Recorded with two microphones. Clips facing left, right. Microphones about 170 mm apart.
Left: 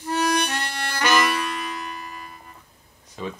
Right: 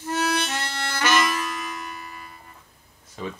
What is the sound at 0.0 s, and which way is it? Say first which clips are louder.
Harmonica: left 2 dB; 15° left (ahead or behind).